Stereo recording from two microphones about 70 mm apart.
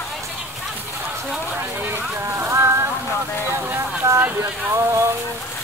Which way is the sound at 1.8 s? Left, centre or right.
Right.